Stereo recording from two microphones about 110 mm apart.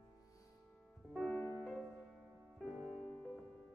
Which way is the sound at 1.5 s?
10° right (ahead or behind).